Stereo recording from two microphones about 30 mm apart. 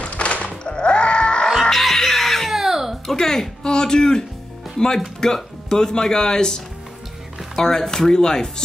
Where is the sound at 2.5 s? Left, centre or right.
Centre.